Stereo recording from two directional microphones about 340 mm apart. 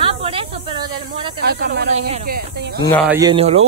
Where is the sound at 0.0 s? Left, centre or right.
Centre.